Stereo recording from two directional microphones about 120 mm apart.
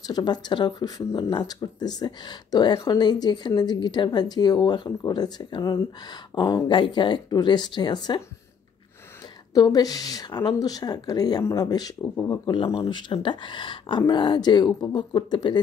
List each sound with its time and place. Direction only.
0.0 s speech: 35° left (ahead or behind)
9.5 s speech: 30° left (ahead or behind)
12.4 s speech: 45° left (ahead or behind)